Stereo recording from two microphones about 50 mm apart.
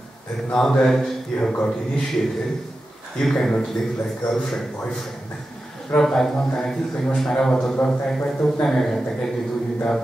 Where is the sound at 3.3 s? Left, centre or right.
Centre.